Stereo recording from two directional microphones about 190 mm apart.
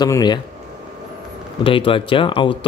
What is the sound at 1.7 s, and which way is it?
A man's voice, 25° left (ahead or behind).